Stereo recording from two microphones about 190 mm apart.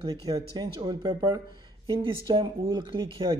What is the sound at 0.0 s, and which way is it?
A man's voice, 20° right (ahead or behind).